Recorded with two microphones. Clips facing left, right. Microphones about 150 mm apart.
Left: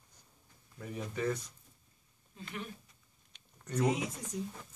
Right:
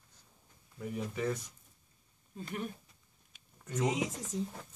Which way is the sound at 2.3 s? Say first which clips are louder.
Right 4 dB; 40° right (ahead or behind).